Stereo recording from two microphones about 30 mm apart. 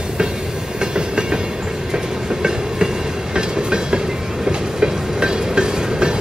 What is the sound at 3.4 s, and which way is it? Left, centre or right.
Train, right.